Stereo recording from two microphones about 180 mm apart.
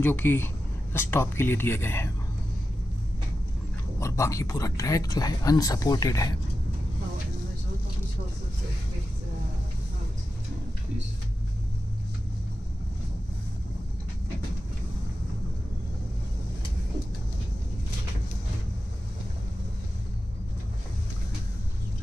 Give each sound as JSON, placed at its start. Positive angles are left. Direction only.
{"t": 0.0, "sound": "speech", "side_deg": 10}
{"t": 4.0, "sound": "speech", "side_deg": 15}